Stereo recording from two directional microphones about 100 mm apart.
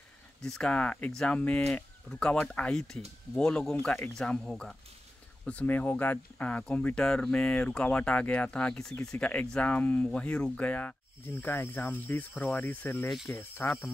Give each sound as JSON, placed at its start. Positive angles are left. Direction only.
{"t": 0.4, "sound": "speech", "side_deg": 10}